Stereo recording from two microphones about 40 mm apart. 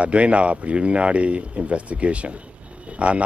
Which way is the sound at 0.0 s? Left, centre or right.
Right.